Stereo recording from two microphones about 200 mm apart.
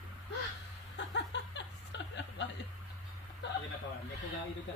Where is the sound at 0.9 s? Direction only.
65° left (ahead or behind).